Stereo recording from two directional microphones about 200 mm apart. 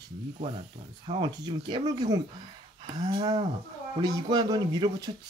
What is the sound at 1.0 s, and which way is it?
Speech, 20° right (ahead or behind).